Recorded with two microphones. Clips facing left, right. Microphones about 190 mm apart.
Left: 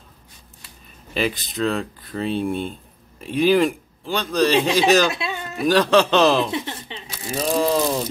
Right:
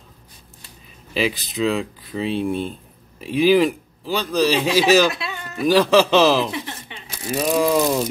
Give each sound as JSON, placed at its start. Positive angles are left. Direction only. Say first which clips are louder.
{"t": 1.1, "sound": "a man's voice", "louder": "right 1 dB", "side_deg": 0}
{"t": 5.1, "sound": "music", "louder": "left 3 dB", "side_deg": 25}
{"t": 5.6, "sound": "speech", "louder": "right 1 dB", "side_deg": -5}